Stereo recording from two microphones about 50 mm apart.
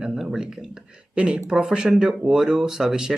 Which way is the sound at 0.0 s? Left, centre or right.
Centre.